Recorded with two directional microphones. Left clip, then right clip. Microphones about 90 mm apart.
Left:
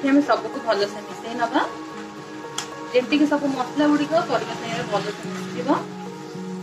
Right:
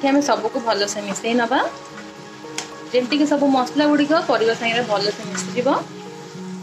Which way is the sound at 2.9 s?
45° right (ahead or behind).